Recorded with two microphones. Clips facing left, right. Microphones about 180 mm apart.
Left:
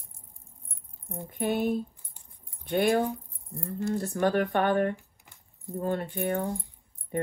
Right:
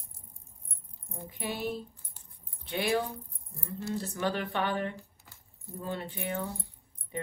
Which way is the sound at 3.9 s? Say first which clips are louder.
Left 6 dB; 55° left (ahead or behind).